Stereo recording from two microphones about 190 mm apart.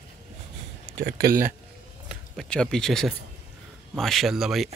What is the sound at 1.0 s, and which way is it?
Speech, 55° right (ahead or behind).